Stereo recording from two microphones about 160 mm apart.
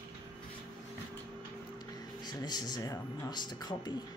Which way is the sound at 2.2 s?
25° left (ahead or behind).